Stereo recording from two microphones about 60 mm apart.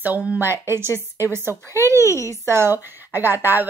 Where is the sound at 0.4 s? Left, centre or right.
Right.